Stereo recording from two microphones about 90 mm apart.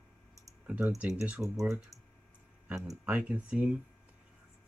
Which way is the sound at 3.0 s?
15° right (ahead or behind).